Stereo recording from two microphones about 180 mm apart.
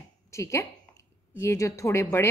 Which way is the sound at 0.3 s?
15° left (ahead or behind).